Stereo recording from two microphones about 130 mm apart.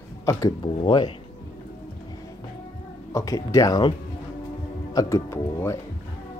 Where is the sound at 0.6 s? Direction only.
40° left (ahead or behind).